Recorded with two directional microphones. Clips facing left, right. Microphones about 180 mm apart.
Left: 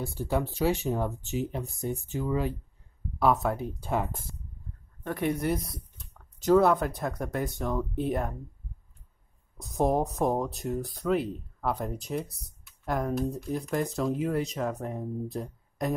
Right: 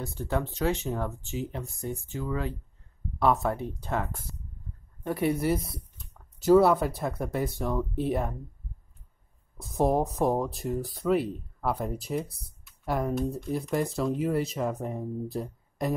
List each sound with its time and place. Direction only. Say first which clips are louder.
0.0 s speech: left 1 dB; 15° left (ahead or behind)
3.2 s speech: even; centre (ahead or behind)
5.0 s speech: right 2 dB; 10° right (ahead or behind)
9.6 s speech: right 1 dB; centre (ahead or behind)